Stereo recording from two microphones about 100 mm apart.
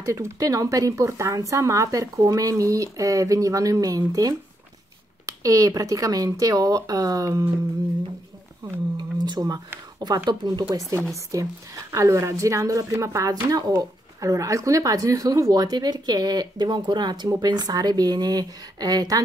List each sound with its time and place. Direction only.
0.0 s speech: 30° right (ahead or behind)
8.9 s speech: 45° right (ahead or behind)
10.9 s speech: 30° right (ahead or behind)